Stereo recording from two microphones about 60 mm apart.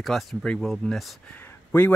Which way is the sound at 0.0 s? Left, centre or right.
Centre.